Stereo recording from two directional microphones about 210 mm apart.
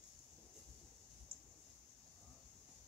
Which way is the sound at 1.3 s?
45° right (ahead or behind).